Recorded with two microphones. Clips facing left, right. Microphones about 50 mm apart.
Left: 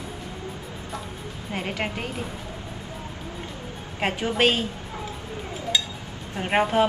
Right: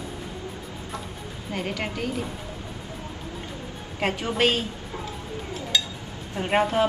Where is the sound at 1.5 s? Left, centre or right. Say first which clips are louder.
Left 1 dB; left.